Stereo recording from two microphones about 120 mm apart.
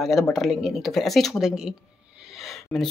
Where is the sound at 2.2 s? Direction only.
Centre (ahead or behind).